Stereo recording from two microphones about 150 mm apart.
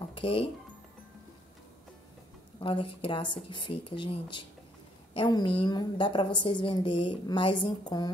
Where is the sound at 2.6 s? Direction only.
35° left (ahead or behind).